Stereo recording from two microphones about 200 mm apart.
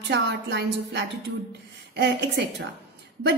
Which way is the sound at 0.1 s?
60° right (ahead or behind).